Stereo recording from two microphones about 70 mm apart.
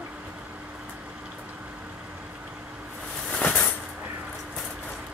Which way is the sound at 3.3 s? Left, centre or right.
Centre.